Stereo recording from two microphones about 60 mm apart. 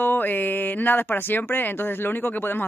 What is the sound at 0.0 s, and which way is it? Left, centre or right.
Speech, left.